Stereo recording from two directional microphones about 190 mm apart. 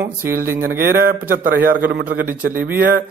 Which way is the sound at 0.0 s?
10° right (ahead or behind).